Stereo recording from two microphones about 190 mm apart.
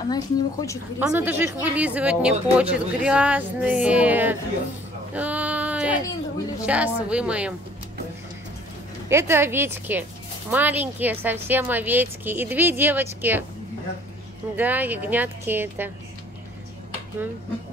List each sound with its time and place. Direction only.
0.1 s a woman's voice: 20° left (ahead or behind)
0.9 s a woman's voice: 10° right (ahead or behind)
9.1 s a woman's voice: 10° right (ahead or behind)
14.6 s a woman's voice: 10° right (ahead or behind)